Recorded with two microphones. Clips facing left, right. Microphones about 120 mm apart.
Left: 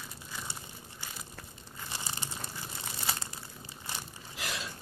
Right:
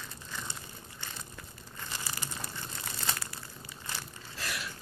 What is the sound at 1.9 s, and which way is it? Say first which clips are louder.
Crumpling: even; 20° left (ahead or behind).